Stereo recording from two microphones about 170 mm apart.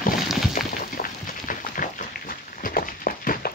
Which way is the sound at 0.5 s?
55° left (ahead or behind).